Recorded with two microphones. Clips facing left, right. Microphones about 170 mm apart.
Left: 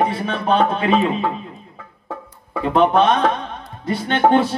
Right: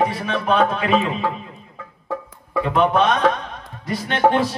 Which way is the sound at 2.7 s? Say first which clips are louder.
Left 3 dB; 30° left (ahead or behind).